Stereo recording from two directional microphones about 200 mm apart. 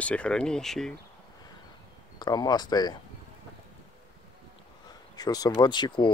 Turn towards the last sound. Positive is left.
turn(degrees=25)  # may be behind; listen again after turning